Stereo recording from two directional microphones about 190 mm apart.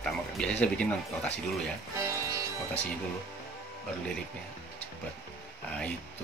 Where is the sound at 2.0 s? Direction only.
15° right (ahead or behind).